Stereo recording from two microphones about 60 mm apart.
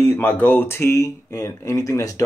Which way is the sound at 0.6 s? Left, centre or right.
Left.